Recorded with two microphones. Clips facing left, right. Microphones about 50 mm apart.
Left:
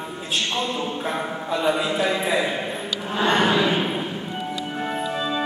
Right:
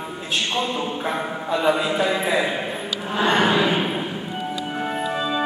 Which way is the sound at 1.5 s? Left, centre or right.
Centre.